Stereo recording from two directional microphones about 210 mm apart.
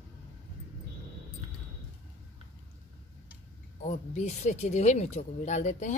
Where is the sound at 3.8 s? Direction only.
35° left (ahead or behind).